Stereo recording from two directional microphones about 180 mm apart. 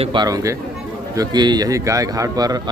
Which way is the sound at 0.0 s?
25° right (ahead or behind).